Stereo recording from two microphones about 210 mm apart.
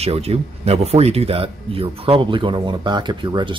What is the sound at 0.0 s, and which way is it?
Speech, 30° right (ahead or behind).